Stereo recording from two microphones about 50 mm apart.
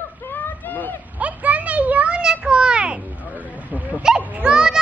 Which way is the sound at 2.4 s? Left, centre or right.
Centre.